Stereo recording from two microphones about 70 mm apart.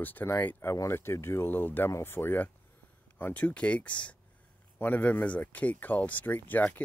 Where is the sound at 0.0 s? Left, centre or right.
Left.